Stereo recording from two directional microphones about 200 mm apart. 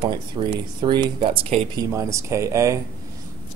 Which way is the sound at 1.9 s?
15° right (ahead or behind).